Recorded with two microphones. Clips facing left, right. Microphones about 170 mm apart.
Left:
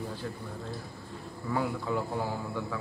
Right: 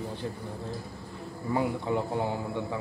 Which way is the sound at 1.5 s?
20° right (ahead or behind).